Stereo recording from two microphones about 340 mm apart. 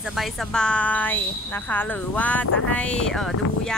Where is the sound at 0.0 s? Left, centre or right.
Centre.